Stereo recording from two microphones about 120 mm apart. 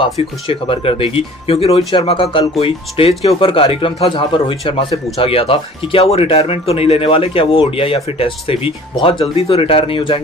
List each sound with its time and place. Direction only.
0.0 s speech: 45° left (ahead or behind)